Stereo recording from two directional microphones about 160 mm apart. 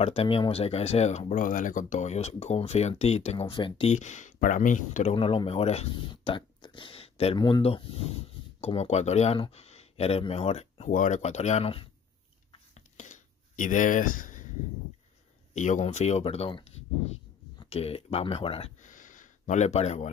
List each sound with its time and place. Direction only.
0.0 s speech: 40° left (ahead or behind)
5.1 s speech: 35° left (ahead or behind)
7.3 s speech: 25° left (ahead or behind)
7.6 s speech: 35° left (ahead or behind)
10.9 s speech: 50° left (ahead or behind); by 11.9 s 35° left (ahead or behind)
12.5 s a sound: 45° left (ahead or behind)
15.5 s speech: 50° left (ahead or behind)
18.8 s a sound: 55° left (ahead or behind)